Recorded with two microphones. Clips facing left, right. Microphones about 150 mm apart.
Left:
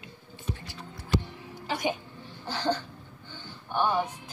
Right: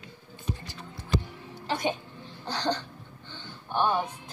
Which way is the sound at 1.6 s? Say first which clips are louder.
Right 1 dB; 10° left (ahead or behind).